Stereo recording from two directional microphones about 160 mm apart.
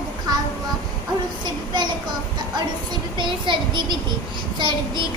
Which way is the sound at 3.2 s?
30° right (ahead or behind).